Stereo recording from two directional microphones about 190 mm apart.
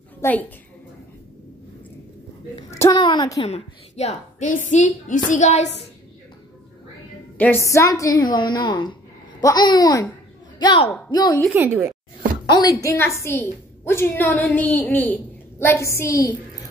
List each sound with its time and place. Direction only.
0.2 s a woman's voice: 10° left (ahead or behind)
2.7 s a child's voice: 15° left (ahead or behind)
3.4 s a woman's voice: 35° left (ahead or behind)
7.3 s a woman's voice: 10° left (ahead or behind)
11.4 s a woman's voice: 10° right (ahead or behind)
12.4 s a woman's voice: 20° left (ahead or behind)